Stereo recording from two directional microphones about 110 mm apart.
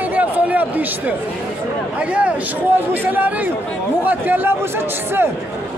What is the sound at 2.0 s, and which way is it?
A man's voice, 10° right (ahead or behind).